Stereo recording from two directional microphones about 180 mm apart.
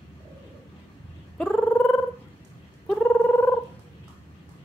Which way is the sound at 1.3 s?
5° left (ahead or behind).